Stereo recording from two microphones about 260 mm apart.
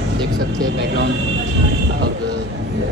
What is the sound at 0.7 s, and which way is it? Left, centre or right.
Speech, right.